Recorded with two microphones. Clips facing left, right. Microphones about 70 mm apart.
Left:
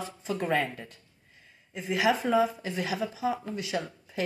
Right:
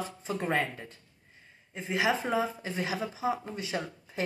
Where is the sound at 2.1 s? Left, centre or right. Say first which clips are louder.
Left 5 dB; centre.